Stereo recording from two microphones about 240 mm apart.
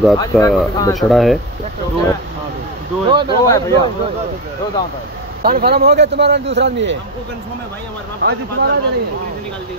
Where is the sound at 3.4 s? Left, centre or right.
Centre.